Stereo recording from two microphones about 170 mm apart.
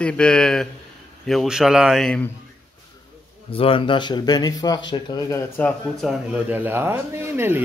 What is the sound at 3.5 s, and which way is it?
A man's voice, 30° left (ahead or behind).